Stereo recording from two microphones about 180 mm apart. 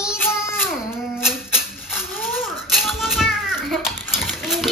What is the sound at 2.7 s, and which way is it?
Children playing, centre (ahead or behind).